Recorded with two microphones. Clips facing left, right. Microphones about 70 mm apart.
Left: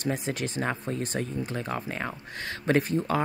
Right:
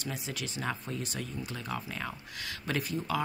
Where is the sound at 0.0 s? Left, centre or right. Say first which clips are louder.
Left 9 dB; left.